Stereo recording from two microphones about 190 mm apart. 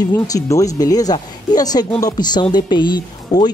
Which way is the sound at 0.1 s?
15° left (ahead or behind).